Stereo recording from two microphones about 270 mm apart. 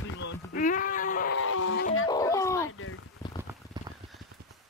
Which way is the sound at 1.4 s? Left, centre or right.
Left.